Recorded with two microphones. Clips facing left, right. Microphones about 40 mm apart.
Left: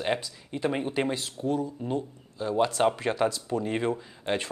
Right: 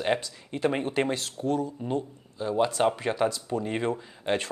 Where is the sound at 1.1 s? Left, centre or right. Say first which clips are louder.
Right 1 dB; right.